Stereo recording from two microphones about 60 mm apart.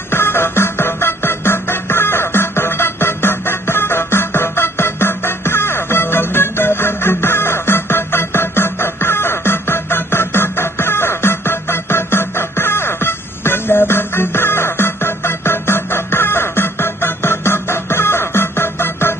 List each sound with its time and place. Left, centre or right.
0.1 s music: left